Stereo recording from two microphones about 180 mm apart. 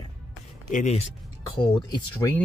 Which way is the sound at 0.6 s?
40° left (ahead or behind).